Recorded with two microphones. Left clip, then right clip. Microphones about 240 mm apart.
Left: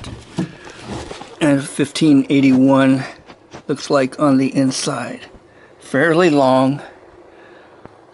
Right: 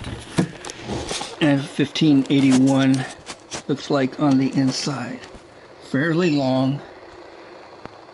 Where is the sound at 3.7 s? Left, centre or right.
Left.